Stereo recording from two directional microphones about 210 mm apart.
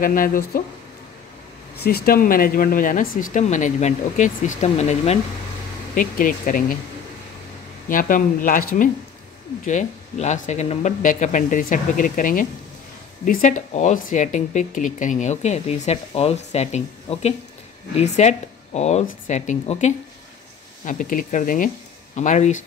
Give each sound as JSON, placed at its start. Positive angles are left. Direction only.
{"t": 0.0, "sound": "speech", "side_deg": 40}
{"t": 1.9, "sound": "speech", "side_deg": 45}
{"t": 5.9, "sound": "speech", "side_deg": 40}
{"t": 7.9, "sound": "speech", "side_deg": 40}
{"t": 9.7, "sound": "speech", "side_deg": 35}